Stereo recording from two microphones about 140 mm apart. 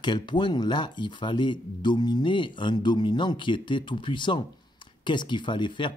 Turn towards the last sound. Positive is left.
turn(degrees=35)  # may be behind; listen again after turning